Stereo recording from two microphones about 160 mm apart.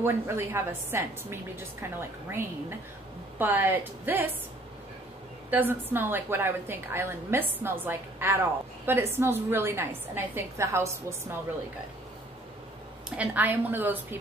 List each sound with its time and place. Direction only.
0.0 s a woman's voice: 15° right (ahead or behind)
5.5 s a woman's voice: 10° right (ahead or behind)
13.1 s a woman's voice: 10° right (ahead or behind)